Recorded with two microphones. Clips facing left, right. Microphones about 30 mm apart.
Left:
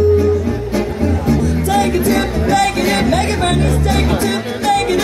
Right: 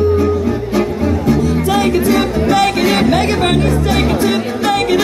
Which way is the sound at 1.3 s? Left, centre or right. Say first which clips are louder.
Even; centre.